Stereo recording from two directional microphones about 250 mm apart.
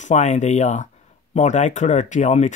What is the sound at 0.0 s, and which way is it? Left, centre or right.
Speech, left.